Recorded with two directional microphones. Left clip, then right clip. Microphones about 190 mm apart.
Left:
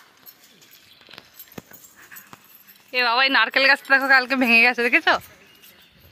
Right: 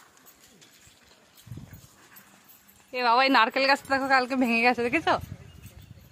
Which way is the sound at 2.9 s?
Centre (ahead or behind).